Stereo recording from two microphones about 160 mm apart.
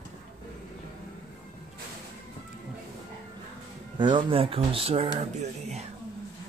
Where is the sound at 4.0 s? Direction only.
30° right (ahead or behind).